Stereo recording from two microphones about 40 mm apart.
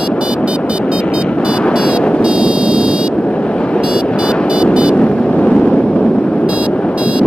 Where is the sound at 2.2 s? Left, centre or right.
Right.